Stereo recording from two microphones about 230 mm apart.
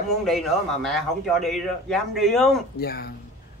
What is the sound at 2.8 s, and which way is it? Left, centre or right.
Speech, left.